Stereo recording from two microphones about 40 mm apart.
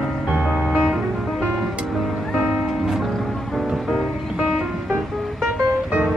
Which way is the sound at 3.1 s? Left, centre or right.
Centre.